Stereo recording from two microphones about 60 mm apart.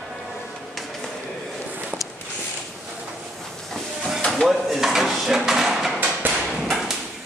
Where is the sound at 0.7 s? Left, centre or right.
Centre.